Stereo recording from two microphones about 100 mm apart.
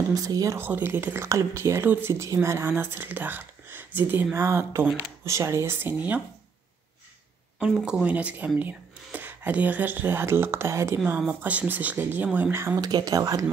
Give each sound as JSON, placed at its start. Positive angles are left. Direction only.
{"t": 0.1, "sound": "speech", "side_deg": -35}
{"t": 0.6, "sound": "speech", "side_deg": -20}
{"t": 7.5, "sound": "speech", "side_deg": -5}
{"t": 11.1, "sound": "speech", "side_deg": -15}
{"t": 12.7, "sound": "speech", "side_deg": -40}